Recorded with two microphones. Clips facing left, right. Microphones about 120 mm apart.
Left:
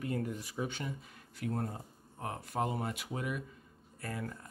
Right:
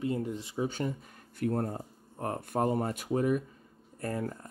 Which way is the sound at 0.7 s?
45° right (ahead or behind).